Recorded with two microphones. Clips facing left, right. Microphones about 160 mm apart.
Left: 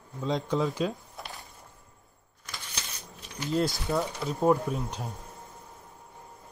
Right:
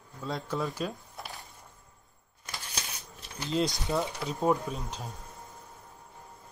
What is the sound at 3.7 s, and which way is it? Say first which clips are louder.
Speech: left 1 dB; centre (ahead or behind).